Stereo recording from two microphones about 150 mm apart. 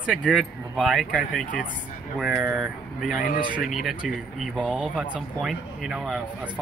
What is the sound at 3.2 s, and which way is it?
Speech, 65° left (ahead or behind).